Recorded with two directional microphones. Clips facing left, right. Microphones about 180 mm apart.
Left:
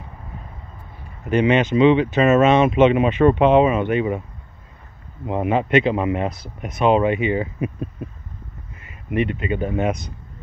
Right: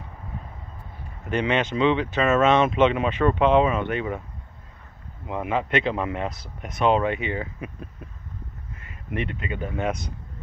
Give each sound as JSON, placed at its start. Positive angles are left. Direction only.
{"t": 1.3, "sound": "speech", "side_deg": 10}
{"t": 5.2, "sound": "speech", "side_deg": 25}
{"t": 5.7, "sound": "speech", "side_deg": 10}
{"t": 9.1, "sound": "speech", "side_deg": 15}